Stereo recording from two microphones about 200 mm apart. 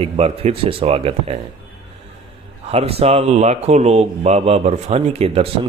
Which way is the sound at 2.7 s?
30° right (ahead or behind).